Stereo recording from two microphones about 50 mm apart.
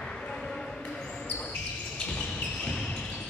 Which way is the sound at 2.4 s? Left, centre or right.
Centre.